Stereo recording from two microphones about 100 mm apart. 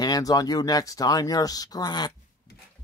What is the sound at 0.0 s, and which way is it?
Speech, 40° left (ahead or behind).